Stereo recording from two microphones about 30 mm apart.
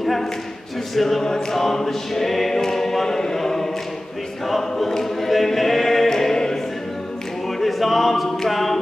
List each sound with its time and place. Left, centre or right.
0.0 s choir: centre
7.4 s choir: centre
8.5 s a capella: centre